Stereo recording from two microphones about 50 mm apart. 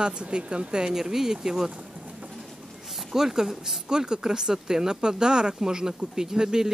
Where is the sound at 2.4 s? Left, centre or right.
Centre.